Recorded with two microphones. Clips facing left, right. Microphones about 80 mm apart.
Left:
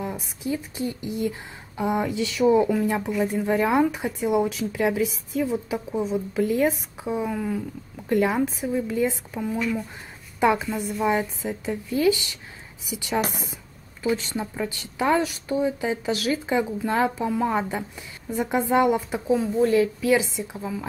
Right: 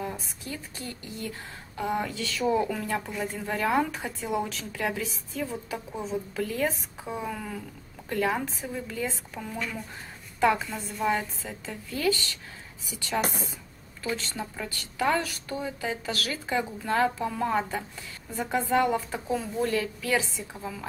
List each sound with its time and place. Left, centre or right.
0.0 s speech: centre
3.3 s speech: centre